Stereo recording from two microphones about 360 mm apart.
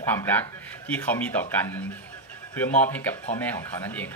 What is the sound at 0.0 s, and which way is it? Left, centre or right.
A man's voice, centre.